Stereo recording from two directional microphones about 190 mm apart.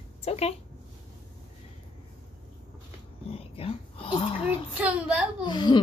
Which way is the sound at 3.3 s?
30° left (ahead or behind).